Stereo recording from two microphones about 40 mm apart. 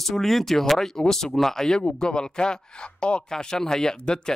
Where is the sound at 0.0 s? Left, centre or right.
Centre.